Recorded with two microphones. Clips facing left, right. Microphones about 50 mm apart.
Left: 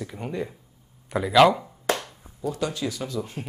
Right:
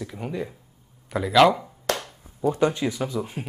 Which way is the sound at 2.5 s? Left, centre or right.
Right.